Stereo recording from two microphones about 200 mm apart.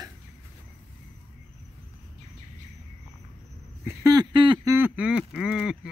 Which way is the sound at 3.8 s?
20° right (ahead or behind).